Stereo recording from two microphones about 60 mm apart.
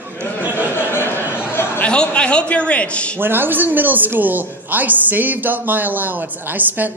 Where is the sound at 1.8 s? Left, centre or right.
Centre.